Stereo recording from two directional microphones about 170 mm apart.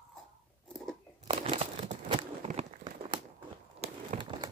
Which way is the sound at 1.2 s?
35° right (ahead or behind).